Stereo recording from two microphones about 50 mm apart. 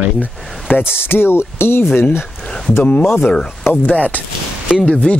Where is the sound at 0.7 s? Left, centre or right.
Left.